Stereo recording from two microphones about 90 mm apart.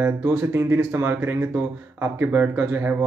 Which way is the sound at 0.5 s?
25° right (ahead or behind).